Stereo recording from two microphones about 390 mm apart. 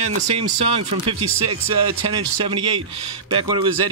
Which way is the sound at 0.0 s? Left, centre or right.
Right.